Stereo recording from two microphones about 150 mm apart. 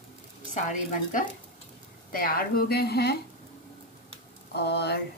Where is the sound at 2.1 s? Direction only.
70° left (ahead or behind); by 3.2 s 90° left.